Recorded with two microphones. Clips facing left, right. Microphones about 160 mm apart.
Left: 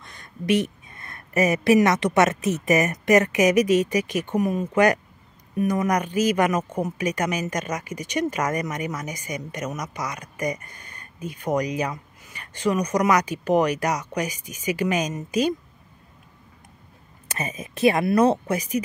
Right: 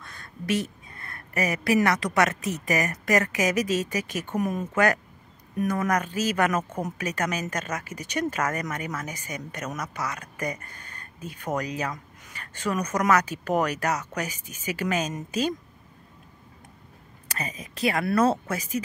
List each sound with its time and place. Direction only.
0.0 s speech: 15° left (ahead or behind)
17.3 s speech: 25° left (ahead or behind)